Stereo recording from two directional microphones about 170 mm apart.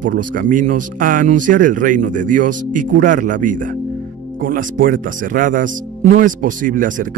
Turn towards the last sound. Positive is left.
turn(degrees=-50)  # may be behind; listen again after turning